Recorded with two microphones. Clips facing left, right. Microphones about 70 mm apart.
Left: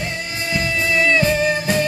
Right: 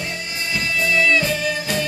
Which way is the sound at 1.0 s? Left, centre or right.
Left.